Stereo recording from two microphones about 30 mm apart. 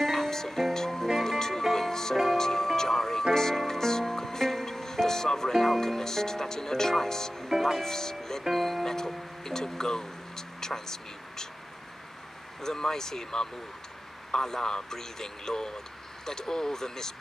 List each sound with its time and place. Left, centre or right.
0.0 s music: centre
5.5 s speech: centre
8.8 s speech: centre
12.6 s a man's voice: centre